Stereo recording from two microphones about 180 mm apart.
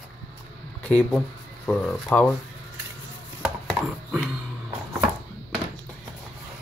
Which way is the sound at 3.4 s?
5° right (ahead or behind).